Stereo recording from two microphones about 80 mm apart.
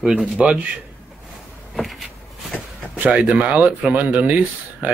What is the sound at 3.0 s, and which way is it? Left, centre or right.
Speech, centre.